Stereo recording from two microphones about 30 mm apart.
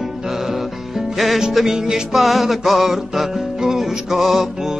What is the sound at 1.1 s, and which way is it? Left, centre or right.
Music, centre.